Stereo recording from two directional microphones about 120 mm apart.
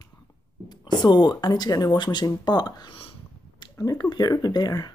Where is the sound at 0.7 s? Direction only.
35° left (ahead or behind).